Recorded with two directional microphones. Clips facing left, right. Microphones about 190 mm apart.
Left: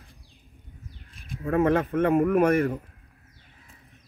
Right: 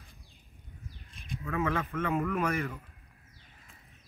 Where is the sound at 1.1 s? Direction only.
50° left (ahead or behind).